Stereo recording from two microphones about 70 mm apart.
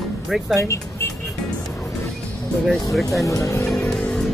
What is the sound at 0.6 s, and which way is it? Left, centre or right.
Speech, left.